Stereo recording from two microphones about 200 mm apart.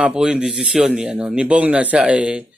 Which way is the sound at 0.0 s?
5° right (ahead or behind).